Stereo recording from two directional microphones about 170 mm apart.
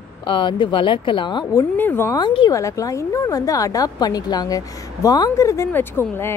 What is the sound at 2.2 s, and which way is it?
Speech, 25° left (ahead or behind).